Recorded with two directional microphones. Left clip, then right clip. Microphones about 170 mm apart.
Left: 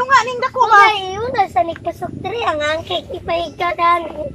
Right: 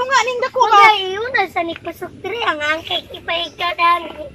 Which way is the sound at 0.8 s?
20° left (ahead or behind).